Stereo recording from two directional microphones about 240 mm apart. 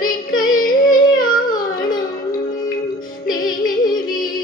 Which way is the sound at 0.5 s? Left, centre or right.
Left.